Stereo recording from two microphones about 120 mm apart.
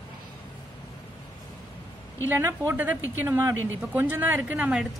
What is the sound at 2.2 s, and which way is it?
A woman's voice, 20° right (ahead or behind).